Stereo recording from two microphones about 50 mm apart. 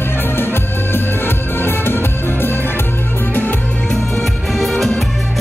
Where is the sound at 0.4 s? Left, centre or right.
Left.